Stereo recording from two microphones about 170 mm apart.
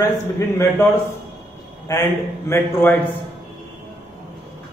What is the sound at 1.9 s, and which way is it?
Speech, 20° left (ahead or behind).